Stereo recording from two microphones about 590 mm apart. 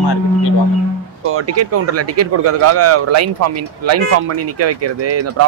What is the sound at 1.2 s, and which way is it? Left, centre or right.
Speech, right.